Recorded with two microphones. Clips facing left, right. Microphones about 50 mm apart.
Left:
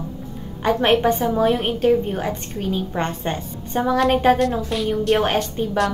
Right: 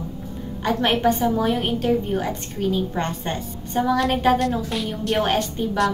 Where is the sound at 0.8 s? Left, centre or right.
Centre.